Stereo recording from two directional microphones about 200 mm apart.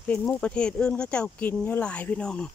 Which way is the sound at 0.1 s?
5° left (ahead or behind).